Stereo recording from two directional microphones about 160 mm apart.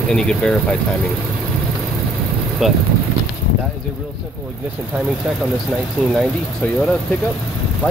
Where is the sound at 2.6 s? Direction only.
Centre (ahead or behind).